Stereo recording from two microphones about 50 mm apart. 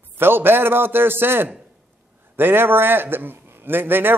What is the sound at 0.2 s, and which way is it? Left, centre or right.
A man's voice, right.